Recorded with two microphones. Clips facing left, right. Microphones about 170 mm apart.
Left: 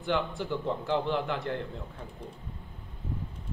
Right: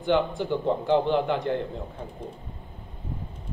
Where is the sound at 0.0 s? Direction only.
25° right (ahead or behind).